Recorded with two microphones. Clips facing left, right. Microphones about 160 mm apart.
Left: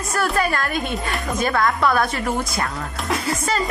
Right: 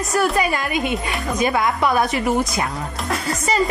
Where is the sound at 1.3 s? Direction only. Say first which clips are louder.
Right 1 dB; 15° right (ahead or behind).